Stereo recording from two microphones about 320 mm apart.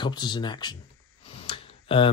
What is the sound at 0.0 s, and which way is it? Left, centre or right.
Speech, centre.